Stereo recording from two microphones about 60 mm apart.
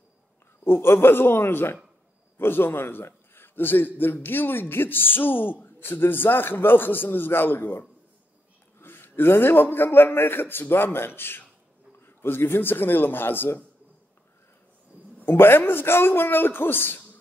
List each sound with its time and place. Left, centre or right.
0.7 s a man's voice: left
8.8 s a man's voice: left
15.2 s a man's voice: left